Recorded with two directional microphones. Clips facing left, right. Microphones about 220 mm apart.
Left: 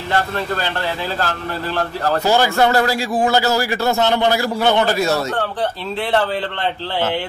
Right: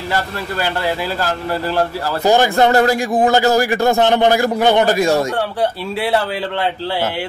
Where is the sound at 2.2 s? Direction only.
15° right (ahead or behind).